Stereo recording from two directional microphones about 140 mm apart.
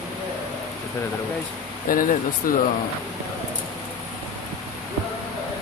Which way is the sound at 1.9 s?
80° left.